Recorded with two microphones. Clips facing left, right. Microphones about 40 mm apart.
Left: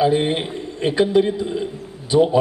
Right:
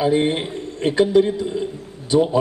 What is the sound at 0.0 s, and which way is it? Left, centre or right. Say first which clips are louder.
A man's voice: left 1 dB; centre.